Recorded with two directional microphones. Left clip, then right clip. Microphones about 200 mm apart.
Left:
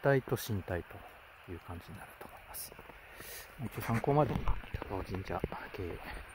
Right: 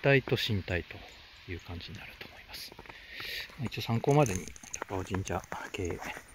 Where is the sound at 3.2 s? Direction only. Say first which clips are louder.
Right 11 dB; 10° left (ahead or behind).